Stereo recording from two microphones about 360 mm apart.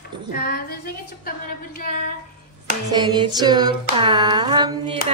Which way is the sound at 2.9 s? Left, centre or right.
Centre.